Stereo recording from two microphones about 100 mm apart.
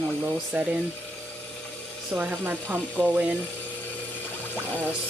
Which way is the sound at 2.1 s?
15° right (ahead or behind).